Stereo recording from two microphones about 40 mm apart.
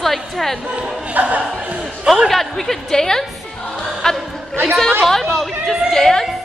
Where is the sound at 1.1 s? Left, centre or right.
Right.